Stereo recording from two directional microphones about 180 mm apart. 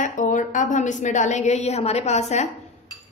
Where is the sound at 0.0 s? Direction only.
45° left (ahead or behind).